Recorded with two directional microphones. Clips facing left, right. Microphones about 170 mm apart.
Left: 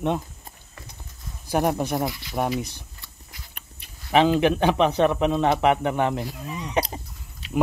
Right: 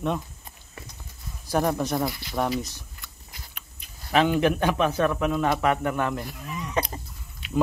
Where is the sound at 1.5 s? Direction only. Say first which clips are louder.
Left 1 dB; 15° left (ahead or behind).